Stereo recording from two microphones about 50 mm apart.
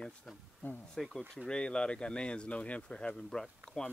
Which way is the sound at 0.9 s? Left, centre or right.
Centre.